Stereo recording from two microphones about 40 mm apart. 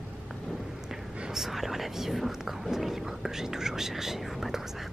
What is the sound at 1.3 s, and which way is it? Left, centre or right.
Speech, centre.